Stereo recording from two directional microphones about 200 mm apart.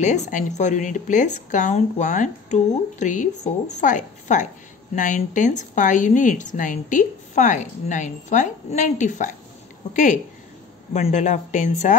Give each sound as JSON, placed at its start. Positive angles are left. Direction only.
{"t": 0.0, "sound": "a woman's voice", "side_deg": 35}